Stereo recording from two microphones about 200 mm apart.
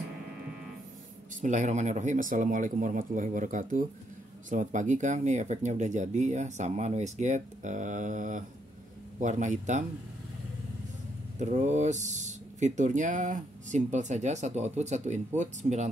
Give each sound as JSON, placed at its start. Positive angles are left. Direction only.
{"t": 1.4, "sound": "speech", "side_deg": -40}
{"t": 11.3, "sound": "speech", "side_deg": -35}